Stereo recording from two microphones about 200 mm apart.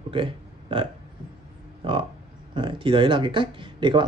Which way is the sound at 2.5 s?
25° right (ahead or behind).